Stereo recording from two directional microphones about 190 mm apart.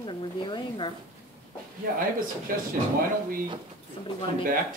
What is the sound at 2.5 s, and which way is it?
Speech, 45° right (ahead or behind).